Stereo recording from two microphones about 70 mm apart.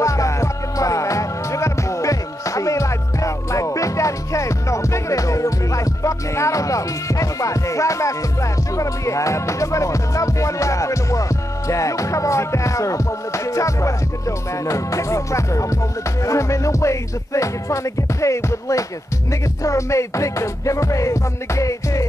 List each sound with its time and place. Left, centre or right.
0.0 s music: left